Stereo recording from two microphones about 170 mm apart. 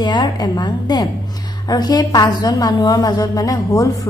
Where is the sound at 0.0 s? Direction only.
25° left (ahead or behind).